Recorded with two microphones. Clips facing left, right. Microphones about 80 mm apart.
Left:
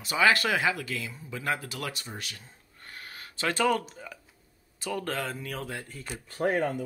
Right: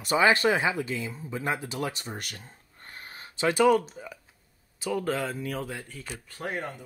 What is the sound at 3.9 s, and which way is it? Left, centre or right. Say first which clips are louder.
Speech: right 2 dB; centre.